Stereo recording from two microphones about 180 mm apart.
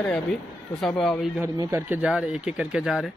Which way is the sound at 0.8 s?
Centre (ahead or behind).